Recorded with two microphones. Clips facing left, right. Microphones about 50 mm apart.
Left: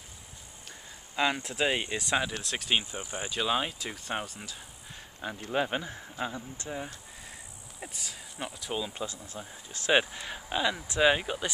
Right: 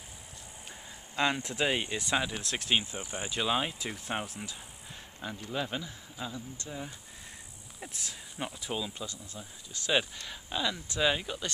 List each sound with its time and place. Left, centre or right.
1.1 s speech: centre
5.4 s speech: left
7.8 s speech: centre
8.4 s speech: centre
8.9 s speech: left